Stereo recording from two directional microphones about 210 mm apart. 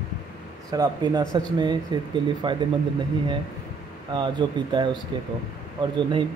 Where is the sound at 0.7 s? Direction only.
20° right (ahead or behind).